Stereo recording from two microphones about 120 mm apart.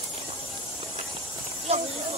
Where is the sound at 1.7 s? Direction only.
60° right (ahead or behind).